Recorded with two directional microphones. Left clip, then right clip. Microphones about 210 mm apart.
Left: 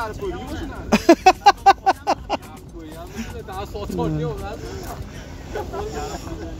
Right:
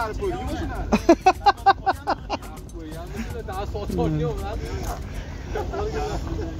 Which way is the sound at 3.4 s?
40° left (ahead or behind).